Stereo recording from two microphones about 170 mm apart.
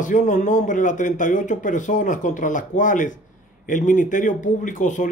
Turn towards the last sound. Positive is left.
turn(degrees=45)  # may be behind; listen again after turning